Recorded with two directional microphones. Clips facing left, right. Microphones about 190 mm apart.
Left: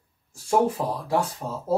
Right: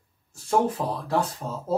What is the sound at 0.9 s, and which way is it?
Speech, 10° left (ahead or behind).